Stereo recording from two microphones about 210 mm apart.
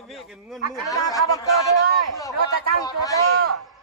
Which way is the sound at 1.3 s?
15° left (ahead or behind).